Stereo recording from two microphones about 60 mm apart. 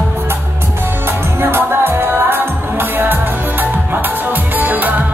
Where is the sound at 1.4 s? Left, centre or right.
Right.